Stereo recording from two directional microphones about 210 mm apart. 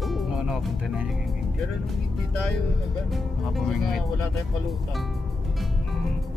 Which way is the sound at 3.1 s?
Centre (ahead or behind).